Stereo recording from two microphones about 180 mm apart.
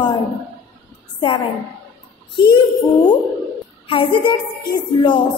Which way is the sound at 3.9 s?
30° left (ahead or behind).